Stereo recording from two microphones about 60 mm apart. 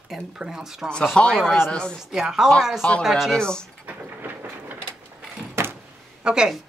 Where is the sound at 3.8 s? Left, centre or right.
Right.